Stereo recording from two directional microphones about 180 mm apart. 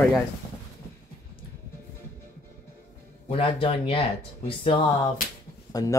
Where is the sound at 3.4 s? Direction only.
30° left (ahead or behind).